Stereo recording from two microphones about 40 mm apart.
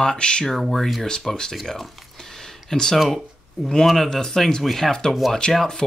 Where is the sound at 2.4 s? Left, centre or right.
Centre.